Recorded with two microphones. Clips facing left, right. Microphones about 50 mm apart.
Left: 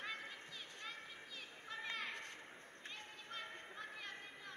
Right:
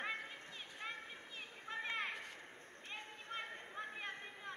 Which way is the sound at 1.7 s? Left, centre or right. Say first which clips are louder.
Right 4 dB; right.